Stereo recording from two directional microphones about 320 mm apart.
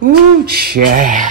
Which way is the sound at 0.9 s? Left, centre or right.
Right.